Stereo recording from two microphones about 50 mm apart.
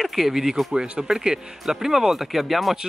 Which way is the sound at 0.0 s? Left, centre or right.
Centre.